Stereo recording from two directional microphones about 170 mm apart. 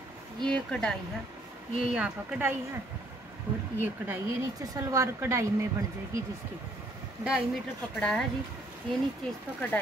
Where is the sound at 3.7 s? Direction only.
10° right (ahead or behind).